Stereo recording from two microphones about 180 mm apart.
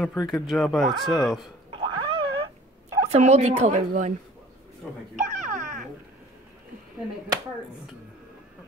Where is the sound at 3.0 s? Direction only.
40° right (ahead or behind).